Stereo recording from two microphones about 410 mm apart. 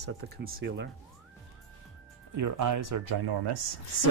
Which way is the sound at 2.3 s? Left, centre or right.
Right.